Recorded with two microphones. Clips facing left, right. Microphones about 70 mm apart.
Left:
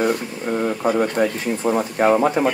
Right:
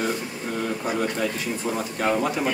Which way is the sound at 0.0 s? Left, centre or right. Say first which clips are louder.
Left 6 dB; left.